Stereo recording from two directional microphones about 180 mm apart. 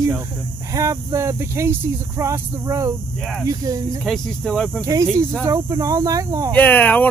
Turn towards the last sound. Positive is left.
turn(degrees=10)  # may be behind; listen again after turning